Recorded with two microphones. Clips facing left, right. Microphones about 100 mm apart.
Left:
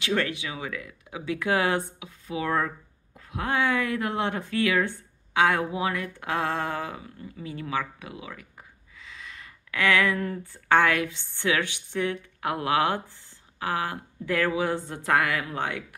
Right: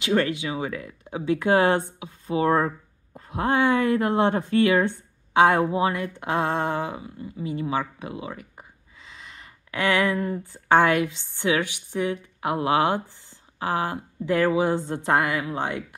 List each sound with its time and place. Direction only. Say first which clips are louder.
0.0 s a woman's voice: right 4 dB; 25° right (ahead or behind)